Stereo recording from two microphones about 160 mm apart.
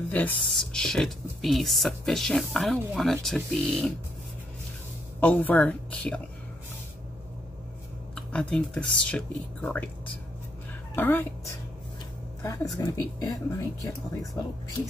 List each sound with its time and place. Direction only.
0.1 s speech: 10° left (ahead or behind)
5.2 s speech: 10° left (ahead or behind)
8.1 s speech: 5° left (ahead or behind)